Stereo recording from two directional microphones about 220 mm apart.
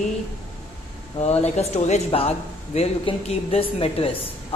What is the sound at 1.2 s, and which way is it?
Speech, 30° left (ahead or behind).